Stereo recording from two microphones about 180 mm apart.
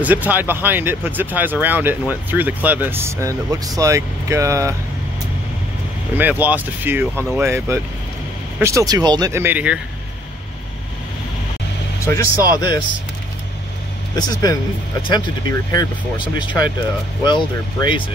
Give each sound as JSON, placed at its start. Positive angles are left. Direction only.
{"t": 0.0, "sound": "speech", "side_deg": -10}
{"t": 6.1, "sound": "speech", "side_deg": -10}
{"t": 12.5, "sound": "speech", "side_deg": 25}
{"t": 14.1, "sound": "speech", "side_deg": 20}